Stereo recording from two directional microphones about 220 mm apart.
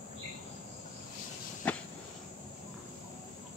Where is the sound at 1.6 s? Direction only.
5° left (ahead or behind).